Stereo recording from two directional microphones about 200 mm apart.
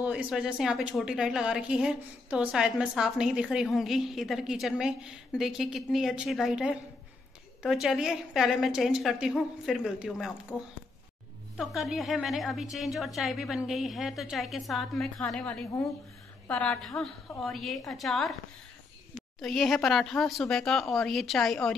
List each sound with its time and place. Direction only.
0.0 s a woman's voice: 5° right (ahead or behind)
11.5 s a woman's voice: centre (ahead or behind)
19.4 s a woman's voice: centre (ahead or behind)